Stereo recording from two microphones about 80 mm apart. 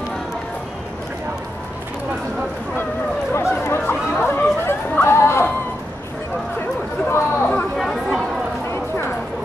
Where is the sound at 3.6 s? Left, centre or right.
Left.